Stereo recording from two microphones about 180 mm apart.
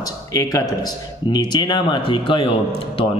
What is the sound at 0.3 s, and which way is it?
A man's voice, 20° left (ahead or behind).